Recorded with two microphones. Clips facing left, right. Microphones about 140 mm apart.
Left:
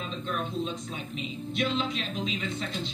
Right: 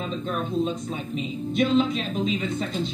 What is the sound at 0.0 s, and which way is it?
Speech, 45° right (ahead or behind).